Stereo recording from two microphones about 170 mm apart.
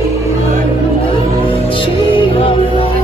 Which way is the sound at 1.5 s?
30° left (ahead or behind).